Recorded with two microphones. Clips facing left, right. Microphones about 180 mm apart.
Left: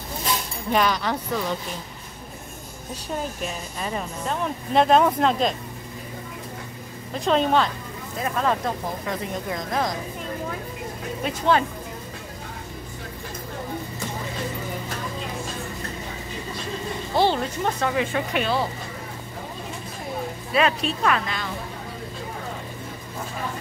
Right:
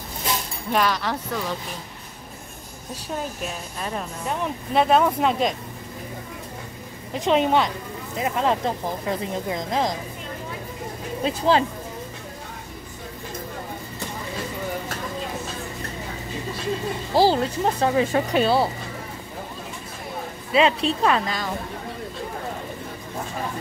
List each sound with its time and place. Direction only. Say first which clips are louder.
0.7 s speech: left 1 dB; centre (ahead or behind)
3.2 s speech: left 1 dB; centre (ahead or behind)
7.2 s a woman's voice: right 1 dB; 15° right (ahead or behind)
11.2 s speech: right 2 dB; 30° right (ahead or behind)
17.1 s speech: right 3 dB; 35° right (ahead or behind)
20.5 s speech: right 3 dB; 25° right (ahead or behind)